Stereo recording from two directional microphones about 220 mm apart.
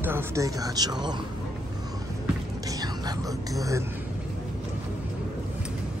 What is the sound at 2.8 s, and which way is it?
Whispering, 15° right (ahead or behind).